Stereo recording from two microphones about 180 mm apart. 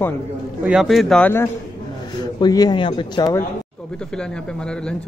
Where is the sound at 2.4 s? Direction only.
20° left (ahead or behind).